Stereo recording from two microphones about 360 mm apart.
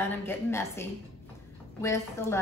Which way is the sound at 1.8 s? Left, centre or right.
Centre.